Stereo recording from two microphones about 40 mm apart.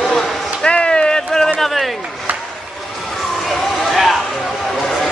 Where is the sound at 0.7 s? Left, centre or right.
Left.